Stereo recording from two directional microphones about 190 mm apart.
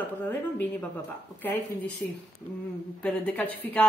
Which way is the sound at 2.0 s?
10° left (ahead or behind).